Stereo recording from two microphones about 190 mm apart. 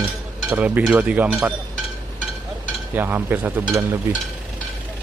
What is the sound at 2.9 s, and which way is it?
Speech, 10° right (ahead or behind).